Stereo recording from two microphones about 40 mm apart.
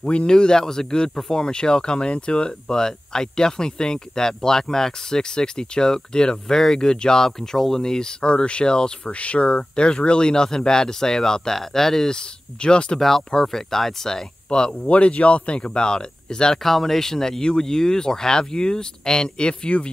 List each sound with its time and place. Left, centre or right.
0.0 s speech: left; by 12.2 s centre
12.6 s speech: left
13.0 s speech: centre
14.5 s speech: left
16.6 s speech: centre; by 19.9 s left